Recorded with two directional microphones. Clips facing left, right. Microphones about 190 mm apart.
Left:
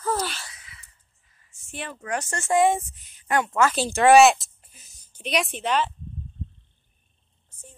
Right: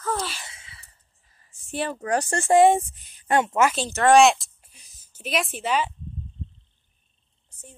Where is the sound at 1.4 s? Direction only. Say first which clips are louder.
Right 8 dB; 35° right (ahead or behind).